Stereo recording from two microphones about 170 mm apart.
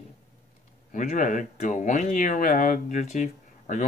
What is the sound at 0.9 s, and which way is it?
Speech, 50° left (ahead or behind).